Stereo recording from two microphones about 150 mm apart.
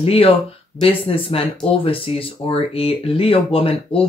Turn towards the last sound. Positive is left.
turn(degrees=40)  # may be behind; listen again after turning